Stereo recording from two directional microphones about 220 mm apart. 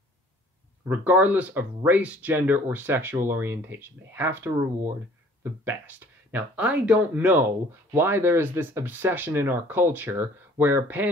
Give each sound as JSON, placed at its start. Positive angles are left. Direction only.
{"t": 0.8, "sound": "speech", "side_deg": -10}